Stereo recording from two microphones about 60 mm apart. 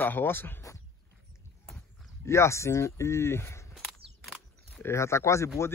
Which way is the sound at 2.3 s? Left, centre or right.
Left.